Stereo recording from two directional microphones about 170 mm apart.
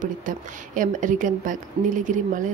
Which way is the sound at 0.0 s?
50° right (ahead or behind).